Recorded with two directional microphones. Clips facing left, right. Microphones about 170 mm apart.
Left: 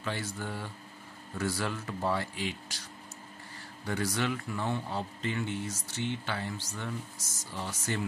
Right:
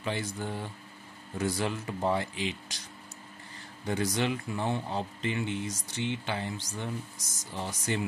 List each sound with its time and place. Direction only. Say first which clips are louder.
0.0 s a man's voice: right 2 dB; 20° right (ahead or behind)
3.8 s a man's voice: right 2 dB; 20° right (ahead or behind)